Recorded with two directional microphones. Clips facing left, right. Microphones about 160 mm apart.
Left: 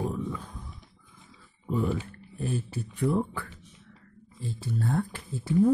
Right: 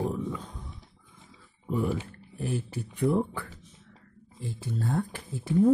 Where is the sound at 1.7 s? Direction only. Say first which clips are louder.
Even; 10° right (ahead or behind).